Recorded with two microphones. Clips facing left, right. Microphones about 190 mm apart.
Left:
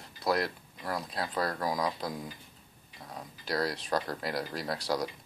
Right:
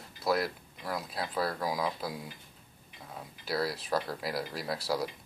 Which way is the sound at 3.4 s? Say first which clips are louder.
Left 1 dB; 5° right (ahead or behind).